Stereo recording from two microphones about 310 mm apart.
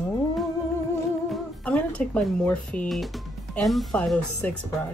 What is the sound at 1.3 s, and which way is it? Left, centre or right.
Speech, centre.